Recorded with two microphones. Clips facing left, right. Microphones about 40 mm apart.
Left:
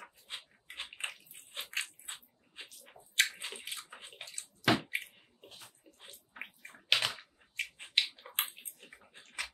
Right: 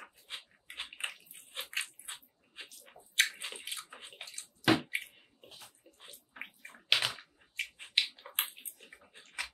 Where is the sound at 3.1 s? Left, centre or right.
Centre.